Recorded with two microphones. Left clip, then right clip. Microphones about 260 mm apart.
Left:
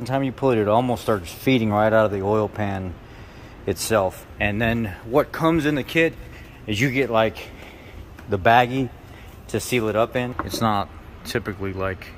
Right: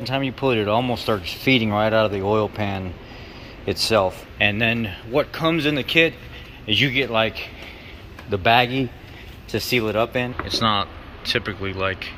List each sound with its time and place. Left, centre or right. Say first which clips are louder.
0.0 s speech: even; centre
3.9 s speech: right 1 dB; centre
10.3 s speech: right 2 dB; left